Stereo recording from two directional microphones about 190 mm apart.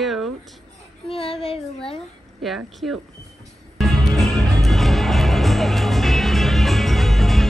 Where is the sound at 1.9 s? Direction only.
Centre (ahead or behind).